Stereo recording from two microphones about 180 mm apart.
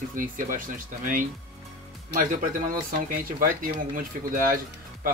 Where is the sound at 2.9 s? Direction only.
50° right (ahead or behind).